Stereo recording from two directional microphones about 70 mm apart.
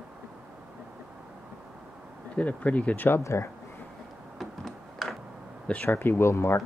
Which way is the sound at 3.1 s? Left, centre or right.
Left.